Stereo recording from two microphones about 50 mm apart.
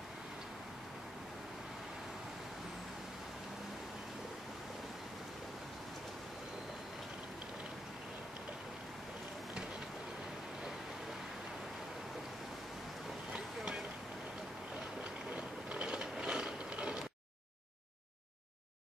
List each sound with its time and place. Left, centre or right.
13.3 s vehicle: centre
15.3 s mechanisms: right